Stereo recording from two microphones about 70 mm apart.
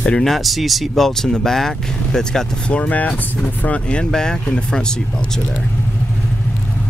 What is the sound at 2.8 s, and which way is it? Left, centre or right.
Speech, left.